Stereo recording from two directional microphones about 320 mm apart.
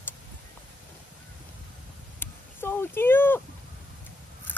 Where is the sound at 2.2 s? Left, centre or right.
Centre.